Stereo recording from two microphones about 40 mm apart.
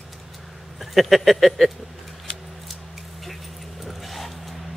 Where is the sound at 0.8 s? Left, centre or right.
Centre.